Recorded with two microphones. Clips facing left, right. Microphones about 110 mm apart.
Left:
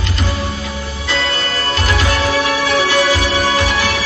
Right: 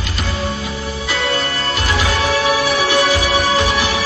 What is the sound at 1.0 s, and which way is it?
Music, 10° right (ahead or behind).